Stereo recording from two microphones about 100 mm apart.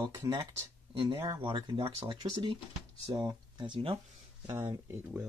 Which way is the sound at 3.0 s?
40° right (ahead or behind).